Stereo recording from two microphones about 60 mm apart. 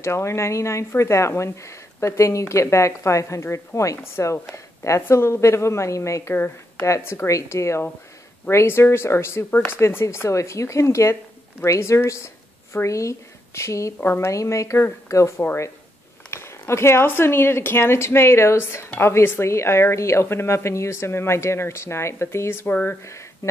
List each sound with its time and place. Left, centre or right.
0.0 s speech: left
5.1 s a woman's voice: left
6.3 s speech: left
7.2 s a woman's voice: left
9.5 s speech: left
9.8 s a woman's voice: left
14.0 s speech: left
14.3 s a woman's voice: left
22.7 s speech: left